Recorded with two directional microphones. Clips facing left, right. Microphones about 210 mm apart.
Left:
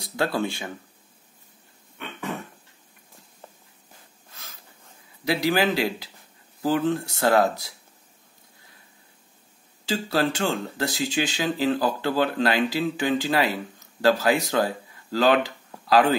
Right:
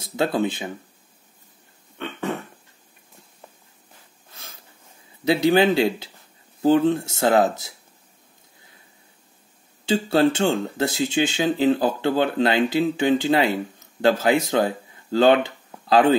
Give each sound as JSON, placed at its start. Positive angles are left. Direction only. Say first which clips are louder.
{"t": 0.0, "sound": "speech", "louder": "right 3 dB", "side_deg": -20}
{"t": 2.0, "sound": "a sound", "louder": "right 5 dB", "side_deg": -25}
{"t": 5.2, "sound": "speech", "louder": "right 5 dB", "side_deg": -25}
{"t": 9.8, "sound": "speech", "louder": "right 6 dB", "side_deg": -25}